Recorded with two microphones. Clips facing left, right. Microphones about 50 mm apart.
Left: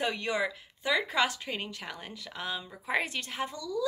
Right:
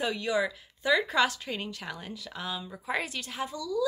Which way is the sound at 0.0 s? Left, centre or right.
Left.